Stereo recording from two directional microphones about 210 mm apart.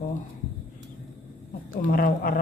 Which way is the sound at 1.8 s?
40° left (ahead or behind).